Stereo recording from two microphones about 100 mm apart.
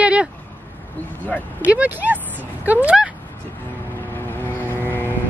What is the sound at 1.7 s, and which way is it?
Speech, 15° right (ahead or behind).